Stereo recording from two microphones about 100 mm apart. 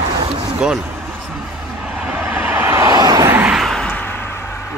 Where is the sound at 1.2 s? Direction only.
10° right (ahead or behind); by 3.0 s 30° right (ahead or behind).